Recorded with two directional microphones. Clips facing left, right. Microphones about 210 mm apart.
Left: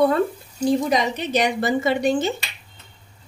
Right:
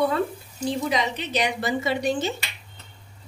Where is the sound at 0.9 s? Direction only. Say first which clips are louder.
Left 4 dB; 45° left (ahead or behind).